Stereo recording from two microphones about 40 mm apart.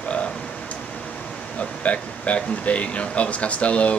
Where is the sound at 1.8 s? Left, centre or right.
Left.